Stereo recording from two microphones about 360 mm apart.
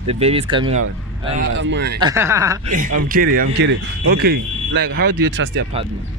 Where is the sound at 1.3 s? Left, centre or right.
Right.